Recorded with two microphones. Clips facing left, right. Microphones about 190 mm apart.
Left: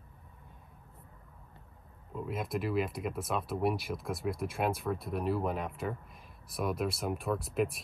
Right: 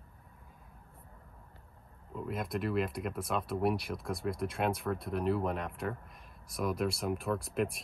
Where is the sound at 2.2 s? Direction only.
Centre (ahead or behind).